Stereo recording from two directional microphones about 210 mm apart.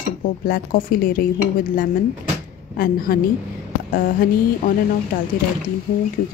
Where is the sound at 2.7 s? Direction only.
45° left (ahead or behind).